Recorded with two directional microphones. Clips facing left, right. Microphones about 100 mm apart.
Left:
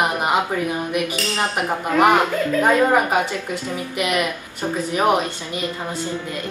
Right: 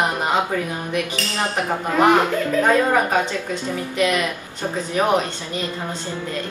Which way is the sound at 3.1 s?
15° left (ahead or behind).